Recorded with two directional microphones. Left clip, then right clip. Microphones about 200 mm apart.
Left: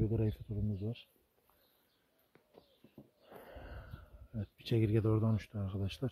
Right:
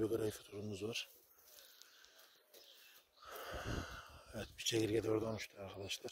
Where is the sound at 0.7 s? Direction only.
35° right (ahead or behind).